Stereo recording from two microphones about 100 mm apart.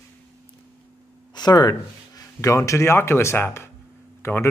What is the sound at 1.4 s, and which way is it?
Speech, 40° left (ahead or behind).